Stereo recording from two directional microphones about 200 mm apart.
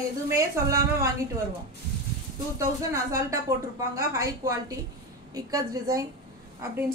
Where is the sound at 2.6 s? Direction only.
15° right (ahead or behind).